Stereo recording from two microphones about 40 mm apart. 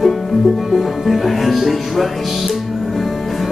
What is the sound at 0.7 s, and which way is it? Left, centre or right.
Music, centre.